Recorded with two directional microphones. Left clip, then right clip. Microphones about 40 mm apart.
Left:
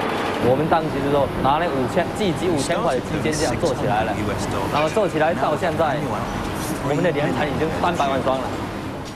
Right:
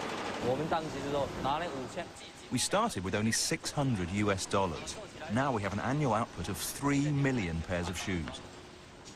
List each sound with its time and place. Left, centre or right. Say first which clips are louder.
0.4 s speech: left 14 dB; right
3.3 s speech: left 13 dB; centre